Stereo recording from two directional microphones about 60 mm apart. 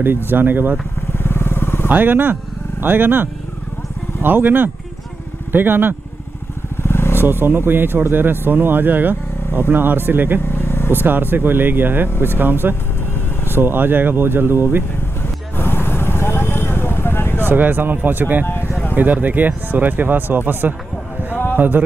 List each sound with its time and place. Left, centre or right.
0.0 s speech: right
1.1 s vehicle: left
1.9 s speech: right
6.8 s vehicle: left
7.2 s speech: right
10.4 s vehicle: left
11.1 s speech: right
15.5 s vehicle: left
17.5 s speech: right
18.4 s vehicle: left
18.9 s speech: right